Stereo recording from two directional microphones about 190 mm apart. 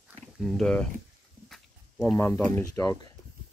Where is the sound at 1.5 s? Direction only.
Centre (ahead or behind).